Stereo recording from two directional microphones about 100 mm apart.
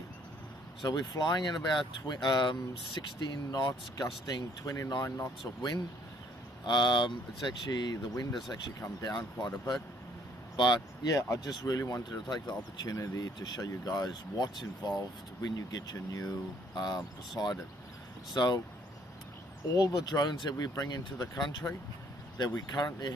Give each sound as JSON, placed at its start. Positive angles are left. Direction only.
{"t": 0.8, "sound": "speech", "side_deg": 45}
{"t": 6.6, "sound": "speech", "side_deg": 50}
{"t": 11.1, "sound": "speech", "side_deg": 35}
{"t": 13.4, "sound": "speech", "side_deg": 40}
{"t": 17.4, "sound": "speech", "side_deg": 30}
{"t": 18.3, "sound": "speech", "side_deg": 45}
{"t": 19.7, "sound": "speech", "side_deg": 40}